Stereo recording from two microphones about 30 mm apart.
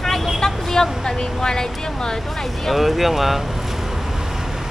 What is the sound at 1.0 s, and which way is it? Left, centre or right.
Speech, left.